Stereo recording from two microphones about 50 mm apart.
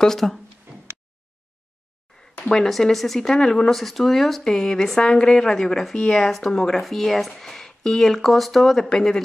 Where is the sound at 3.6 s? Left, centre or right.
Centre.